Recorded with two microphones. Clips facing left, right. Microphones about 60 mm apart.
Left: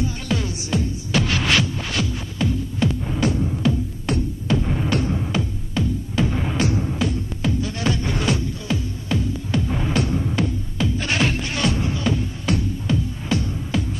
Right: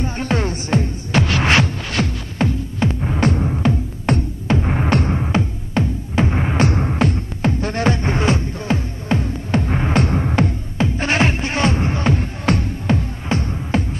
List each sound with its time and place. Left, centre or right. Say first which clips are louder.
0.0 s music: right 4 dB; right
6.7 s music: right 4 dB; right
10.8 s music: right 4 dB; right
13.2 s music: right 2 dB; right